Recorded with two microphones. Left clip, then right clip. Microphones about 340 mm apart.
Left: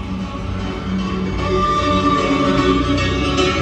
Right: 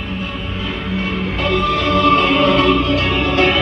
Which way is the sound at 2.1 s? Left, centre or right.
Centre.